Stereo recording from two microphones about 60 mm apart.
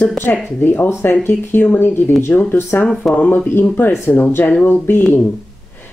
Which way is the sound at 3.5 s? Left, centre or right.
Left.